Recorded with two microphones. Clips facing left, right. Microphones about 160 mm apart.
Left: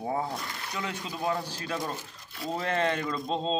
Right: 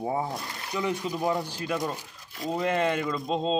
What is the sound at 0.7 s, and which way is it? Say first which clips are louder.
Speech: right 7 dB; 15° right (ahead or behind).